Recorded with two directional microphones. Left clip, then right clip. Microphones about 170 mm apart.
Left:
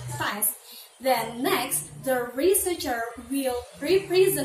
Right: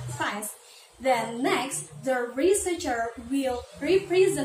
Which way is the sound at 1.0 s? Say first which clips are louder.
Even; centre (ahead or behind).